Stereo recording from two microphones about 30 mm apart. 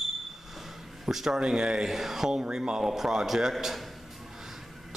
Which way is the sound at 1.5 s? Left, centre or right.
Right.